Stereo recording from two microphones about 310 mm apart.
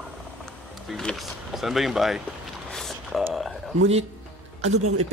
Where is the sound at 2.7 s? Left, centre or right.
Centre.